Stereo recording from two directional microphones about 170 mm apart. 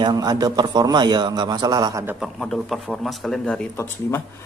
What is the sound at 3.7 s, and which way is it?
Speech, 15° left (ahead or behind).